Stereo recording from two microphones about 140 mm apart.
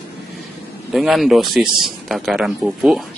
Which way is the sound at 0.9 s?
Centre (ahead or behind).